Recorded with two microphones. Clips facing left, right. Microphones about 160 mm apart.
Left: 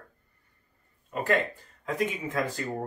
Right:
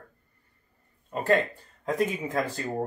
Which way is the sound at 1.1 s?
35° right (ahead or behind).